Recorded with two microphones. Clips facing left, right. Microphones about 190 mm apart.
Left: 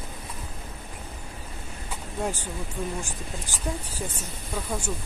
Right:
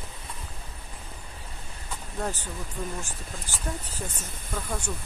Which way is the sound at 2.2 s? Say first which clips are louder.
Left 2 dB; 10° left (ahead or behind).